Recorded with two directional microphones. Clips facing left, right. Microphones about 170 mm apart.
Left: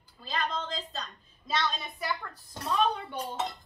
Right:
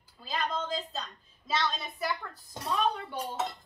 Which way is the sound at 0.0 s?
5° right (ahead or behind).